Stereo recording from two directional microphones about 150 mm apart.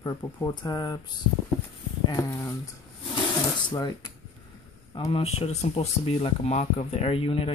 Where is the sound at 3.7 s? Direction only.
30° left (ahead or behind).